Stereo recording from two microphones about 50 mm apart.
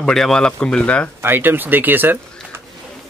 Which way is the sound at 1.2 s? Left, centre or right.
Right.